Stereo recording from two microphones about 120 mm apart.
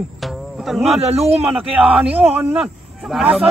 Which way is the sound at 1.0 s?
60° right (ahead or behind).